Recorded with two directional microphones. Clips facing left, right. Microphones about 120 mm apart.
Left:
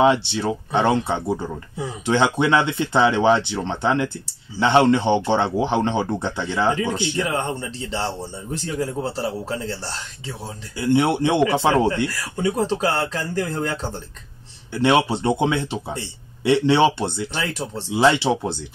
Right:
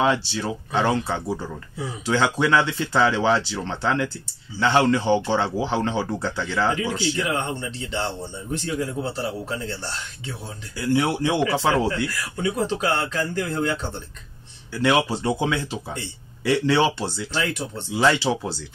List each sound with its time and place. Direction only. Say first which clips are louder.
0.0 s speech: left 4 dB; 20° left (ahead or behind)
7.2 s speech: left 1 dB; 35° left (ahead or behind)
10.8 s speech: left 3 dB; 25° left (ahead or behind)
12.1 s speech: left 3 dB; 35° left (ahead or behind)
14.7 s speech: left 3 dB; 25° left (ahead or behind)
17.6 s speech: left 2 dB; 35° left (ahead or behind)
17.9 s speech: left 3 dB; 20° left (ahead or behind)